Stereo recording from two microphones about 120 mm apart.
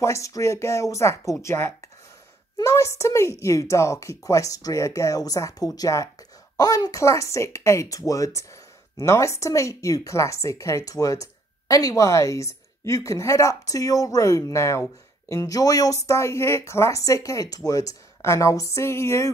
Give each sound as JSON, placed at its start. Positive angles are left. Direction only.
{"t": 0.0, "sound": "speech", "side_deg": 25}